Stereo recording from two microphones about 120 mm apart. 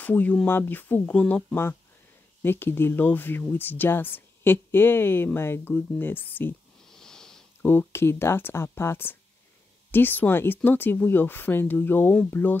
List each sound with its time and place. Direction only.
0.0 s speech: 10° left (ahead or behind)
6.9 s a sound: 5° left (ahead or behind)
7.6 s speech: 20° left (ahead or behind)